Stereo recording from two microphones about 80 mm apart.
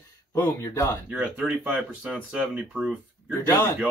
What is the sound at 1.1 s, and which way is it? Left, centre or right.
Speech, centre.